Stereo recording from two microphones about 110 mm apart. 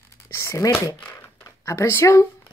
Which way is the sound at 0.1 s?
25° left (ahead or behind).